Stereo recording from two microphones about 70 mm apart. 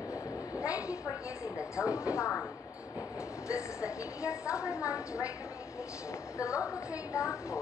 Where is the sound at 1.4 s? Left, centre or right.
Left.